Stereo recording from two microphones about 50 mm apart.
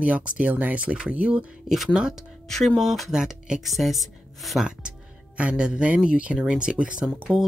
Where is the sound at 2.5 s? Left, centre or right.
Centre.